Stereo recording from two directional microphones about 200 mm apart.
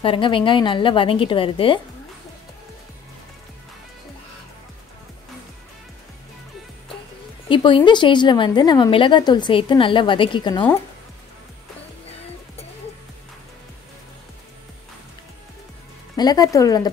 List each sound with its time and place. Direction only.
0.0 s a woman's voice: 25° left (ahead or behind)
7.4 s a woman's voice: 25° left (ahead or behind)
16.2 s a woman's voice: 20° left (ahead or behind)